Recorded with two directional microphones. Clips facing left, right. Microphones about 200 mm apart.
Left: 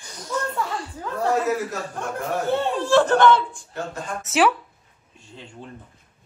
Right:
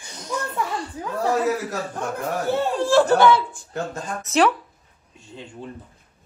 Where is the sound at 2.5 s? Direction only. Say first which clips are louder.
Right 1 dB; 5° right (ahead or behind).